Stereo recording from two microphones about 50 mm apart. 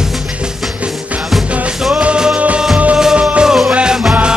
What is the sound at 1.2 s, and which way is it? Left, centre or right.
Music, centre.